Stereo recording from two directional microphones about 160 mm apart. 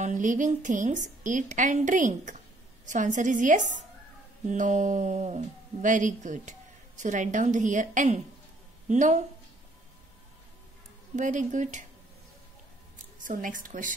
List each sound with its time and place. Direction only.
0.0 s a woman's voice: 50° right (ahead or behind)
11.1 s a woman's voice: 50° right (ahead or behind)
13.2 s a woman's voice: 55° right (ahead or behind)